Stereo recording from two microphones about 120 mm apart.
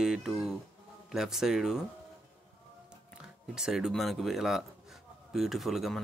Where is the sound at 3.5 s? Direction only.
5° right (ahead or behind).